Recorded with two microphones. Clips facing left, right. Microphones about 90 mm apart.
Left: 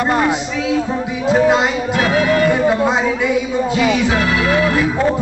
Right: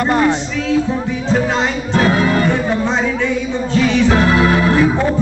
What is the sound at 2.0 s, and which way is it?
Music, 35° right (ahead or behind).